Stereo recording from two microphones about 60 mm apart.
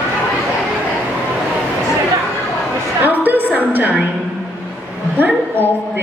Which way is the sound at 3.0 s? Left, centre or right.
Right.